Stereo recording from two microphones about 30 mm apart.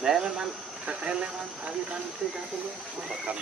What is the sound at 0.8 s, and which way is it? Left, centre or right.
Speech, right.